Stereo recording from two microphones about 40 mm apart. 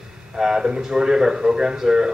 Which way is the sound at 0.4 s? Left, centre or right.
Centre.